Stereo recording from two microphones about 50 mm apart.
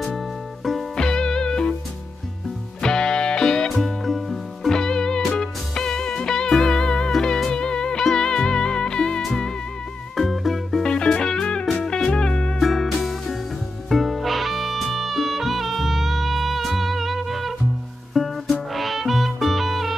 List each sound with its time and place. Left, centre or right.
0.9 s music: centre
2.8 s music: centre
3.7 s music: centre
4.7 s music: centre
10.8 s music: centre
12.5 s music: centre